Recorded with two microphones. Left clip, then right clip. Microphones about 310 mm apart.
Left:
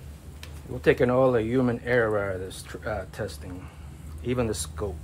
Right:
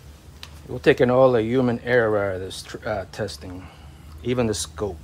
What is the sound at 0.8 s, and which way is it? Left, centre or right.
Speech, right.